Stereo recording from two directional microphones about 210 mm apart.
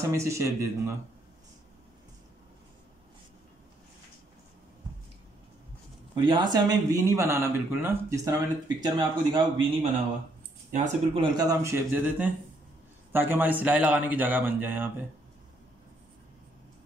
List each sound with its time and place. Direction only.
0.0 s a man's voice: 15° right (ahead or behind)
6.1 s speech: 20° right (ahead or behind)
10.7 s speech: 35° right (ahead or behind)
11.2 s a man's voice: 20° right (ahead or behind)